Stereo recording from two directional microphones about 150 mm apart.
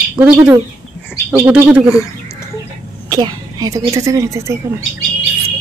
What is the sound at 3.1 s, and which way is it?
Speech, 25° right (ahead or behind).